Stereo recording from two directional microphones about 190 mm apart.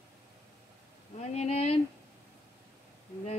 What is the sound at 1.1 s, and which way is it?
Speech, 35° left (ahead or behind).